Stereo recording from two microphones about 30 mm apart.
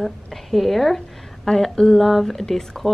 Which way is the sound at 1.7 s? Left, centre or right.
Left.